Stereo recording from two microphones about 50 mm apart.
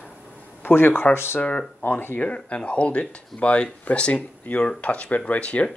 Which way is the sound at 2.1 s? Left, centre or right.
Left.